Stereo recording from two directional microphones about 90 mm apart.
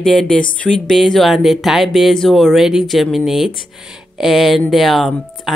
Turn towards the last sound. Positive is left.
turn(degrees=0)  # may be behind; listen again after turning